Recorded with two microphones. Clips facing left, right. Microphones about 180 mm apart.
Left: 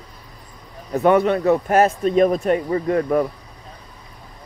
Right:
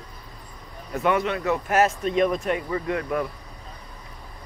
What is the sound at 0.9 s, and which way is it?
Speech, 35° left (ahead or behind).